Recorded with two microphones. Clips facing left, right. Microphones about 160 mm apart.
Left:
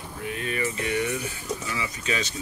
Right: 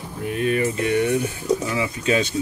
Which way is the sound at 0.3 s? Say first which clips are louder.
Right 8 dB; 50° right (ahead or behind).